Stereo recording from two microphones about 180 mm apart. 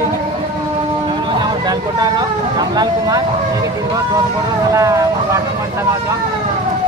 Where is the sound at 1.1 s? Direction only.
25° right (ahead or behind).